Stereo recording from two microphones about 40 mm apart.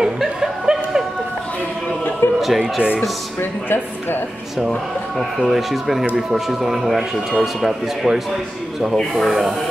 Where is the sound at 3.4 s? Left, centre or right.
Left.